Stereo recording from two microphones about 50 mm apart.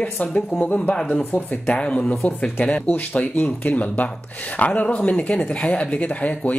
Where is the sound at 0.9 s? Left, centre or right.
Centre.